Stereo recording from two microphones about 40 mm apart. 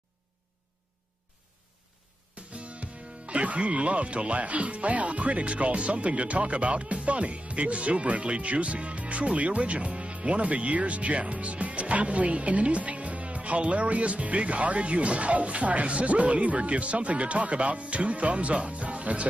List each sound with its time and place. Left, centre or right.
2.5 s speech: right